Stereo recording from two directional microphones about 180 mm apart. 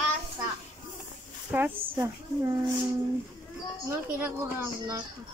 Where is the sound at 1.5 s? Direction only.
10° right (ahead or behind).